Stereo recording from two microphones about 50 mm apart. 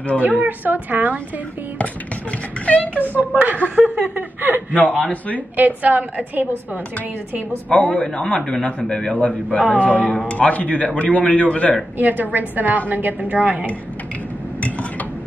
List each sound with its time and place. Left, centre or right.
0.4 s a woman's voice: right
2.6 s a man's voice: left
3.2 s a woman's voice: right
4.7 s a man's voice: left
5.6 s a woman's voice: right
7.7 s a man's voice: left
9.5 s a man's voice: left
12.0 s a woman's voice: right